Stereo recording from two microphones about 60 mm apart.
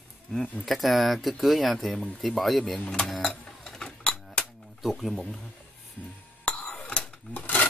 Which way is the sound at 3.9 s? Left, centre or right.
Centre.